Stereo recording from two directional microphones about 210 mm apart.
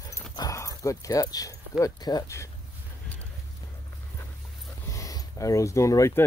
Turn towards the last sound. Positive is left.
turn(degrees=15)  # may be behind; listen again after turning